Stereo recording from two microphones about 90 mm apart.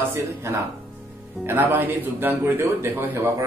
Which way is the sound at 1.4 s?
20° right (ahead or behind).